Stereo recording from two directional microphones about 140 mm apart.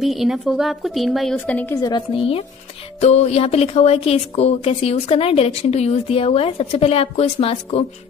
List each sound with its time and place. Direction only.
0.0 s a woman's voice: centre (ahead or behind)
1.4 s a woman's voice: 10° left (ahead or behind)
1.8 s a woman's voice: 30° left (ahead or behind)
3.0 s speech: 50° left (ahead or behind)